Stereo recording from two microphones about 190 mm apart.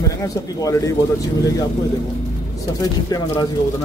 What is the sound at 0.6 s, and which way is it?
Speech, 20° left (ahead or behind).